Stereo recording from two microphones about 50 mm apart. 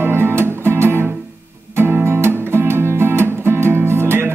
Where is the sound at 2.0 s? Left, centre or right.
Right.